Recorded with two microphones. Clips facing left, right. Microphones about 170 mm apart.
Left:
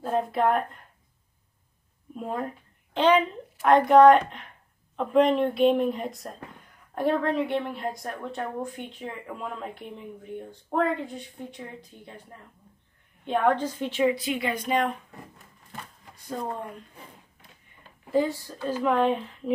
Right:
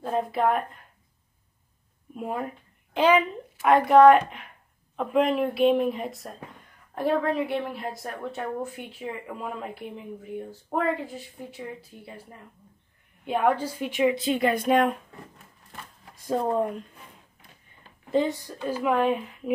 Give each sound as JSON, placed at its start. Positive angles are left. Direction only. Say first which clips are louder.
{"t": 0.0, "sound": "a woman's voice", "louder": "even", "side_deg": 0}
{"t": 2.1, "sound": "a woman's voice", "louder": "even", "side_deg": -5}
{"t": 14.4, "sound": "speech", "louder": "right 6 dB", "side_deg": -55}
{"t": 18.1, "sound": "a woman's voice", "louder": "even", "side_deg": -20}